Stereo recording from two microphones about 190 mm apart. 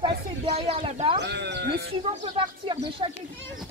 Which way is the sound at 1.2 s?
65° right (ahead or behind).